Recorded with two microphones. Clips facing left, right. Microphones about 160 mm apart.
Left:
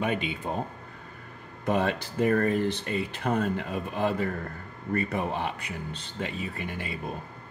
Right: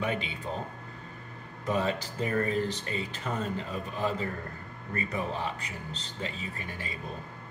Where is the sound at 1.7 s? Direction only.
60° left (ahead or behind).